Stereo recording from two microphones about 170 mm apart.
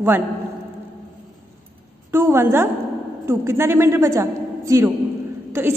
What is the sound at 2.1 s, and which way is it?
A woman's voice, 15° right (ahead or behind).